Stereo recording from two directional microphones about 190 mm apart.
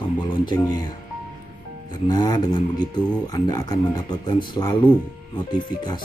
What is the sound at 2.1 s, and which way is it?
Speech, 20° left (ahead or behind).